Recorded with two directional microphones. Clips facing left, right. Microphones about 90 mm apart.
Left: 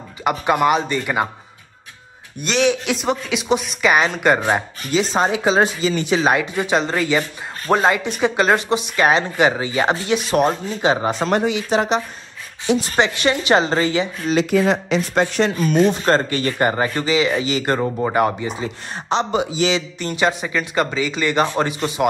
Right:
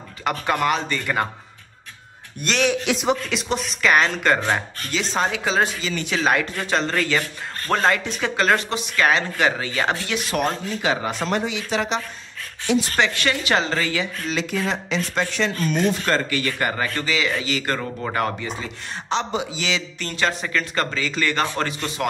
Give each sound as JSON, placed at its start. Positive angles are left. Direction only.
{"t": 0.2, "sound": "speech", "side_deg": 15}
{"t": 2.4, "sound": "speech", "side_deg": 0}
{"t": 11.2, "sound": "speech", "side_deg": 45}
{"t": 12.9, "sound": "speech", "side_deg": 20}
{"t": 14.3, "sound": "speech", "side_deg": 55}
{"t": 15.5, "sound": "speech", "side_deg": 5}
{"t": 15.9, "sound": "speech", "side_deg": 30}
{"t": 19.0, "sound": "speech", "side_deg": 45}
{"t": 19.7, "sound": "speech", "side_deg": 15}